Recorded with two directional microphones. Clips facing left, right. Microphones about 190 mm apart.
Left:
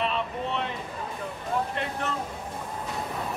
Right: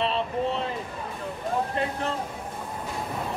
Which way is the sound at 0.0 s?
30° right (ahead or behind).